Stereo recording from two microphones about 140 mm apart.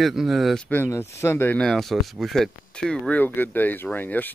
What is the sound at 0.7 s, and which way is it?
Speech, 15° left (ahead or behind).